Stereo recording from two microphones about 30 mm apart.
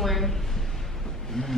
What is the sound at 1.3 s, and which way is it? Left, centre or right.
Vehicle, centre.